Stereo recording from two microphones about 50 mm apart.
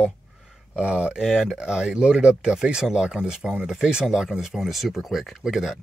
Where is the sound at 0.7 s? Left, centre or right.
Right.